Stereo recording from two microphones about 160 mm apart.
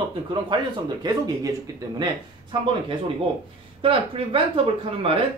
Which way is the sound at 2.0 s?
30° right (ahead or behind).